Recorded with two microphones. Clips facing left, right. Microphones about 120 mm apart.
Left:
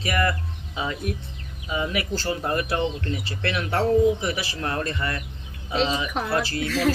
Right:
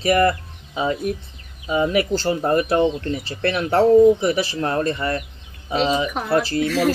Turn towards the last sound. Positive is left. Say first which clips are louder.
# right 4 dB
turn(degrees=-5)  # may be behind; listen again after turning